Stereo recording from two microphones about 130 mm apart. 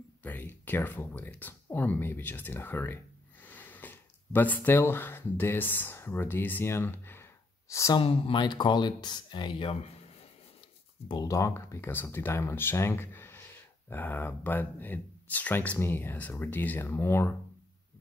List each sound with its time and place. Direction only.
0.2 s speech: 15° left (ahead or behind)
8.0 s speech: 40° left (ahead or behind)
11.1 s speech: 25° left (ahead or behind)